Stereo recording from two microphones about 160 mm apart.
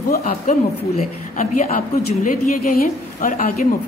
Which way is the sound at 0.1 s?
65° left (ahead or behind).